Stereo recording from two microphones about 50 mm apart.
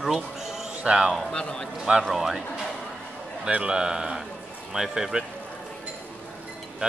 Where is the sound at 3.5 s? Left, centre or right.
Centre.